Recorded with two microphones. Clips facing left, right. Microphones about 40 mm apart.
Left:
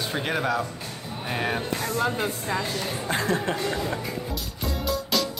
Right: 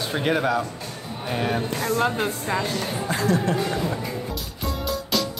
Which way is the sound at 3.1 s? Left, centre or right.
Left.